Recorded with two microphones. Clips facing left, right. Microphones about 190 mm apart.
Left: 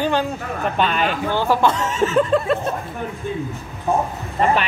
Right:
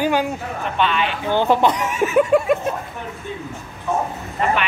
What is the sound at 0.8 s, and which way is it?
Speech, 40° left (ahead or behind).